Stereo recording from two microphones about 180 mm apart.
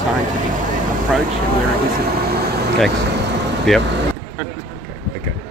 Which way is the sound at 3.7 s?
Centre (ahead or behind).